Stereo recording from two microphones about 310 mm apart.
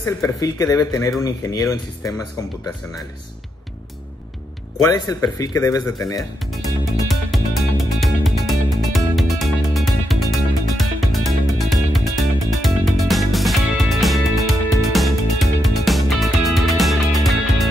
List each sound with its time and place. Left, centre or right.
0.0 s speech: centre
4.8 s speech: centre
7.1 s music: centre